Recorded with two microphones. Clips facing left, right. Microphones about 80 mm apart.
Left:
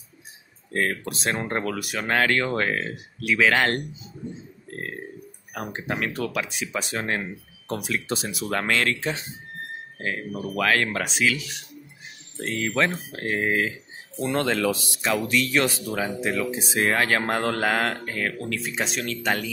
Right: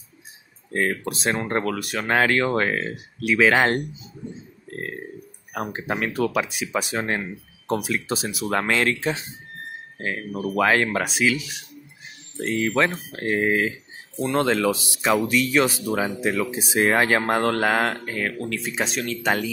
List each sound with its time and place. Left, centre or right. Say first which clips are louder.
0.7 s speech: right 2 dB; centre
4.7 s burping: right 2 dB; centre
5.5 s speech: right 3 dB; centre
10.5 s speech: right 3 dB; centre
16.2 s speech: right 2 dB; centre
17.2 s speech: right 3 dB; centre